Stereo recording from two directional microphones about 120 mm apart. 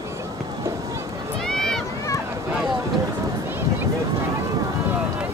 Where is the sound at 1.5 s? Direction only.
5° left (ahead or behind).